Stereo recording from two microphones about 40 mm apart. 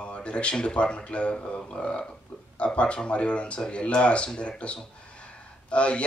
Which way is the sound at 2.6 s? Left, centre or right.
Left.